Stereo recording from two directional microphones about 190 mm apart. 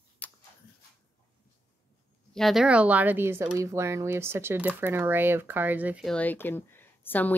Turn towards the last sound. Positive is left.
turn(degrees=10)  # may be behind; listen again after turning